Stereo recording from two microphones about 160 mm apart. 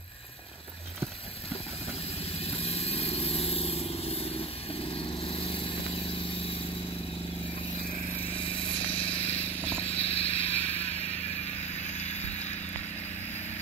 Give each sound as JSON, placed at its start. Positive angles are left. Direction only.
{"t": 2.4, "sound": "vehicle", "side_deg": 40}
{"t": 8.3, "sound": "a sound", "side_deg": 35}
{"t": 9.8, "sound": "vehicle", "side_deg": 35}